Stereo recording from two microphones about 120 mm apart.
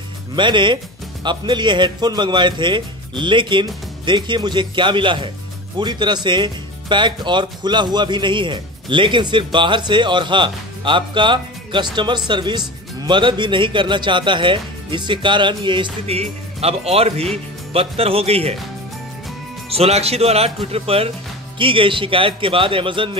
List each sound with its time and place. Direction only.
0.4 s speech: 40° right (ahead or behind)
16.1 s speech: 60° right (ahead or behind)
19.7 s speech: 55° right (ahead or behind)